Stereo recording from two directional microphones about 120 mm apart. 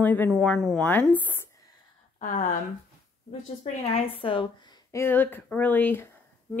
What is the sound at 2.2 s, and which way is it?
Speech, 90° left.